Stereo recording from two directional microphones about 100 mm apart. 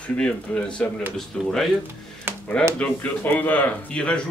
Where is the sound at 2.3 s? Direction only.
20° right (ahead or behind).